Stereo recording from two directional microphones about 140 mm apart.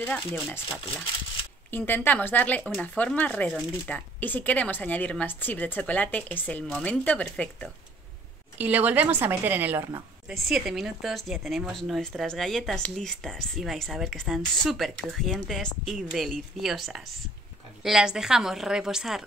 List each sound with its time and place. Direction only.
0.0 s speech: 15° left (ahead or behind)
1.7 s speech: 15° left (ahead or behind)
8.5 s a woman's voice: 10° right (ahead or behind)
10.2 s a woman's voice: 5° right (ahead or behind)